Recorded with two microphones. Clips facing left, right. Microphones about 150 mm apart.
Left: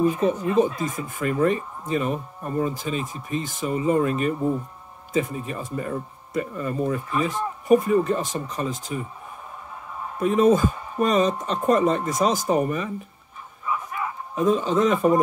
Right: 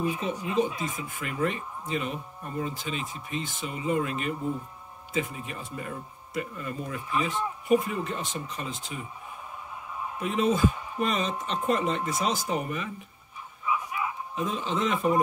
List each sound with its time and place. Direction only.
0.0 s speech: 45° left (ahead or behind)
10.1 s speech: 45° left (ahead or behind)
13.7 s bow-wow: 45° left (ahead or behind)